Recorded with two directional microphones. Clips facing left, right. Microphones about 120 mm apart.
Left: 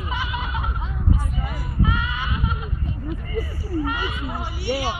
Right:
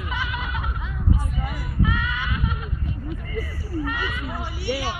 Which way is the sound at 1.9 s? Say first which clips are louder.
Left 1 dB; 25° left (ahead or behind).